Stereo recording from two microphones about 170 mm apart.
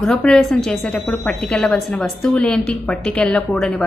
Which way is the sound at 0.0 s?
5° left (ahead or behind).